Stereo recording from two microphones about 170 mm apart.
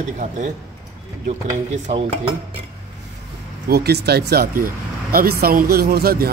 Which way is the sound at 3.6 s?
70° right (ahead or behind).